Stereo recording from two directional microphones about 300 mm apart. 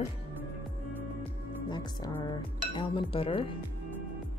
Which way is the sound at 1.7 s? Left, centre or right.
Centre.